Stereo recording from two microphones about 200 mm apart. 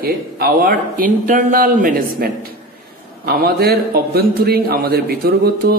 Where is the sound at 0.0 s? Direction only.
50° right (ahead or behind).